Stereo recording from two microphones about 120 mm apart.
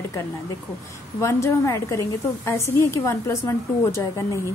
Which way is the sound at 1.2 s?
25° left (ahead or behind).